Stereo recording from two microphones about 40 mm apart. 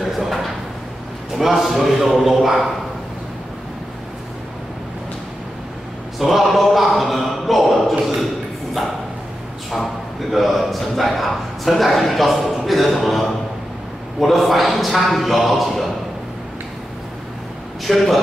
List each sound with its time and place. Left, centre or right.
1.3 s a man's voice: centre
6.1 s a man's voice: centre
10.3 s a man's voice: centre
17.9 s a man's voice: centre